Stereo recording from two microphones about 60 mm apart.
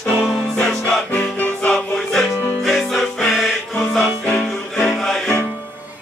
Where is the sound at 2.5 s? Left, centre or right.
Centre.